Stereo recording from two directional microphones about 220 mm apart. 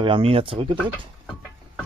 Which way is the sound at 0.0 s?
25° right (ahead or behind).